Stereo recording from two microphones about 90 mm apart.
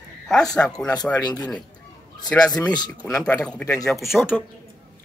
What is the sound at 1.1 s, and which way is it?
Speech, 45° left (ahead or behind).